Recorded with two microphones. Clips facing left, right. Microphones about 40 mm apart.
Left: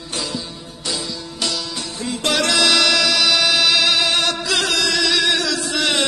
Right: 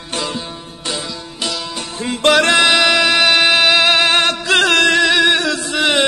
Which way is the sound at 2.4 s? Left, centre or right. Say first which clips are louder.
Right 1 dB; right.